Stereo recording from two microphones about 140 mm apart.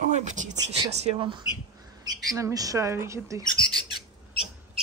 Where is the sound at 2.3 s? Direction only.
25° right (ahead or behind).